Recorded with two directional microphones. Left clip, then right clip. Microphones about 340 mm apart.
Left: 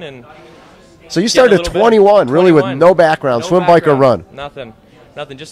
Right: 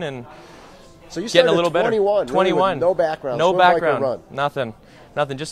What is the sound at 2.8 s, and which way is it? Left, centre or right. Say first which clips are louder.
Speech: left 10 dB; left.